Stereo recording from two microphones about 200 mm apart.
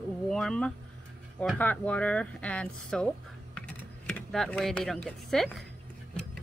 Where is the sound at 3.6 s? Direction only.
5° left (ahead or behind).